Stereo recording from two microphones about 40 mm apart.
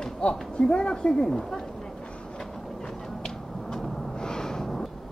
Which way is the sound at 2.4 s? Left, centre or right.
Centre.